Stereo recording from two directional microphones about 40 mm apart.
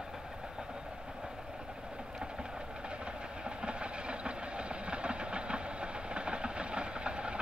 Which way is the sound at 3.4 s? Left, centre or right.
Right.